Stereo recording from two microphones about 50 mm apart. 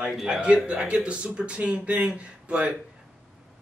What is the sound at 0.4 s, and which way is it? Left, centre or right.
A man's voice, centre.